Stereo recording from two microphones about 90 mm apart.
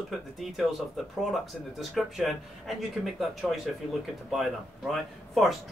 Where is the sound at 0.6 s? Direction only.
Centre (ahead or behind).